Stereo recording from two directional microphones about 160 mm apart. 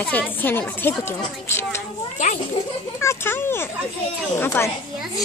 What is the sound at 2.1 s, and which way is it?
Speech, 50° left (ahead or behind).